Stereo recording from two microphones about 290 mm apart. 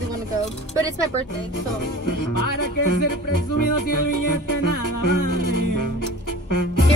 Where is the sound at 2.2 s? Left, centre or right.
Left.